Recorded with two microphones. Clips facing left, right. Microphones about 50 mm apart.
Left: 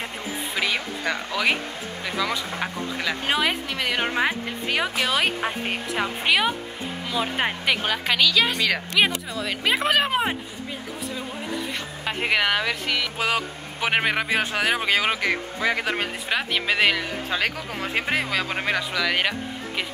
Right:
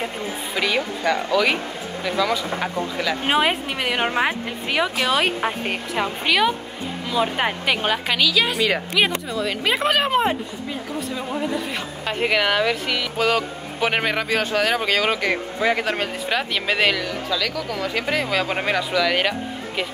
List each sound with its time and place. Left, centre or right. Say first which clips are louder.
0.6 s a woman's voice: right 4 dB; centre
3.3 s a woman's voice: right 4 dB; right
4.8 s a woman's voice: right 3 dB; centre
6.2 s speech: right 2 dB; centre
7.1 s a woman's voice: right 4 dB; centre
9.3 s a woman's voice: right 2 dB; centre
12.1 s a woman's voice: right 2 dB; centre
15.2 s a woman's voice: right 3 dB; centre
15.8 s speech: right 3 dB; centre
17.3 s speech: right 1 dB; left
18.3 s a woman's voice: right 3 dB; centre